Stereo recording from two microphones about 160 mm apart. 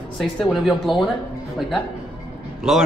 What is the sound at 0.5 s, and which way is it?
Speech, centre (ahead or behind).